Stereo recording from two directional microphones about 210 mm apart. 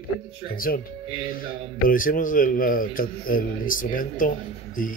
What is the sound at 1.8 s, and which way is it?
A man's voice, 40° left (ahead or behind).